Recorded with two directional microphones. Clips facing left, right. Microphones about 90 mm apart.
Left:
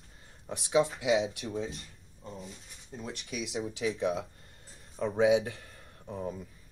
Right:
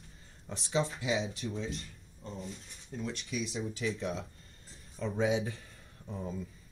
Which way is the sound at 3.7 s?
75° left (ahead or behind).